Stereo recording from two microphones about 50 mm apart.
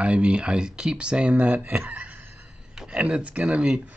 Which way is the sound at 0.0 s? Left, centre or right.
Right.